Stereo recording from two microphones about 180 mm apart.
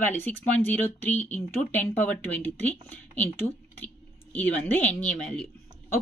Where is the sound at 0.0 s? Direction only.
10° left (ahead or behind).